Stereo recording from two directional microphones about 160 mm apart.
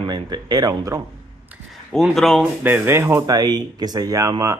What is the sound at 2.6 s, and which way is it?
Speech, 15° right (ahead or behind).